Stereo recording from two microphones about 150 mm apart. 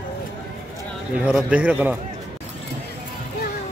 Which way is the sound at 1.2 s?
10° right (ahead or behind).